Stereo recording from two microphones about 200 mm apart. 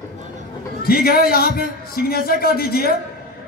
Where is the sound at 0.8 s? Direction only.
50° left (ahead or behind).